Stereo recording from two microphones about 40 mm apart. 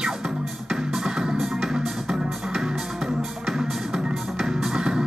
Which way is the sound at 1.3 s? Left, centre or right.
Centre.